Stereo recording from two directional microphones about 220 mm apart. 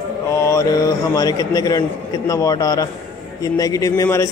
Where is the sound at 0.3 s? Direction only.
15° left (ahead or behind).